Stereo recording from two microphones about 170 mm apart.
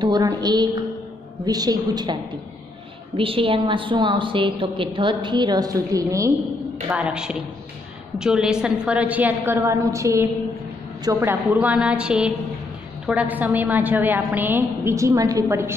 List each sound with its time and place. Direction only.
0.0 s a woman's voice: 20° right (ahead or behind)
3.2 s a woman's voice: 30° right (ahead or behind)
6.9 s a woman's voice: 5° right (ahead or behind)